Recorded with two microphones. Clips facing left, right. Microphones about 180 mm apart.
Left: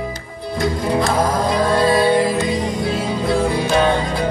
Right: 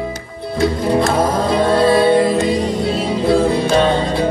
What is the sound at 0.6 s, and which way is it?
Music, 25° right (ahead or behind).